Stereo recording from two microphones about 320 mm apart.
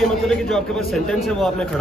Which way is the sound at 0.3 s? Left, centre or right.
Centre.